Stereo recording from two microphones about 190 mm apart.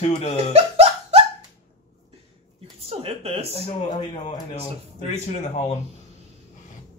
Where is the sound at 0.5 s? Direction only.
35° right (ahead or behind).